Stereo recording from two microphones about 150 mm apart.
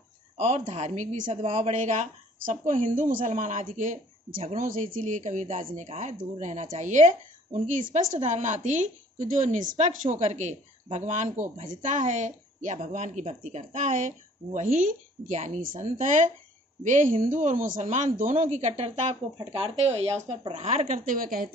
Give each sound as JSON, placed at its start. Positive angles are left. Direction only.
{"t": 0.4, "sound": "a woman's voice", "side_deg": -50}